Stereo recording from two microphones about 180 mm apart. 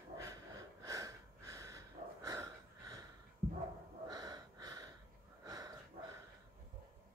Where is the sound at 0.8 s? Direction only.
20° right (ahead or behind).